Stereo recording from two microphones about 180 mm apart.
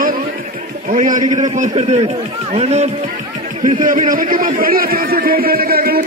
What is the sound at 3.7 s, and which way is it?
A man's voice, 45° right (ahead or behind).